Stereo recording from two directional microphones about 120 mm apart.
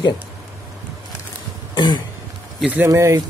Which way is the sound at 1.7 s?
40° left (ahead or behind).